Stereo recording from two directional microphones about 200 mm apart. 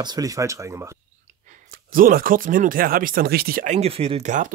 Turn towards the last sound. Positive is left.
turn(degrees=-40)  # may be behind; listen again after turning